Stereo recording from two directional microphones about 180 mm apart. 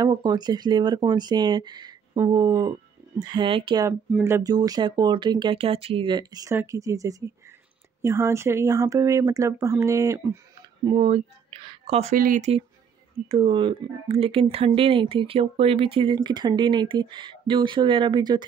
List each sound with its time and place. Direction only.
0.0 s speech: 25° right (ahead or behind)
11.0 s speech: 35° right (ahead or behind)
13.3 s speech: 30° right (ahead or behind)